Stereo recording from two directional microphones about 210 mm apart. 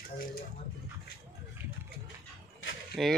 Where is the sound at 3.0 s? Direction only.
Centre (ahead or behind).